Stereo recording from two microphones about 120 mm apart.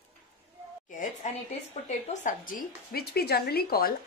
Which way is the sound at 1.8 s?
85° left.